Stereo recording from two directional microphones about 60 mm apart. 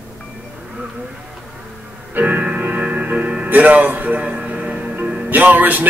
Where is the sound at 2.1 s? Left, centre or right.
Right.